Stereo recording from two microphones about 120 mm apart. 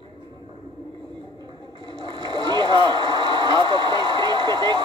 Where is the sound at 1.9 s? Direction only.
40° right (ahead or behind).